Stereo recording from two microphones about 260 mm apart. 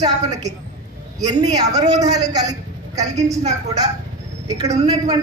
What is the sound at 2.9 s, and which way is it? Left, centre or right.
Speech, right.